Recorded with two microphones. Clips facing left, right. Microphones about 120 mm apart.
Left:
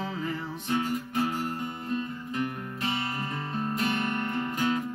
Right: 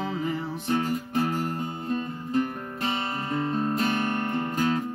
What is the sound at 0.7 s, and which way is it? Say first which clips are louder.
Music: right 2 dB; 40° right (ahead or behind).